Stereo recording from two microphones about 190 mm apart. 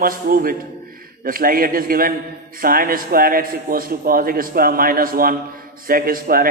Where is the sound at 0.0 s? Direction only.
50° right (ahead or behind).